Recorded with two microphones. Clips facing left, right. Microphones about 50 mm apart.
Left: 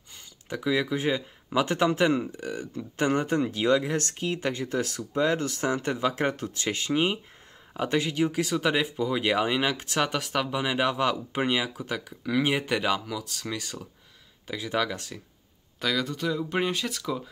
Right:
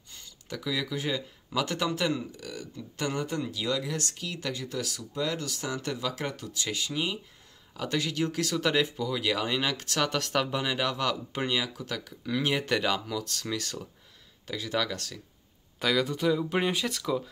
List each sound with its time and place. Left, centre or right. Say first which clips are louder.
0.1 s speech: left 4 dB; left
7.7 s speech: left 4 dB; left
9.0 s speech: left 4 dB; left; by 10.8 s centre
10.8 s speech: left 4 dB; left
15.8 s speech: right 2 dB; centre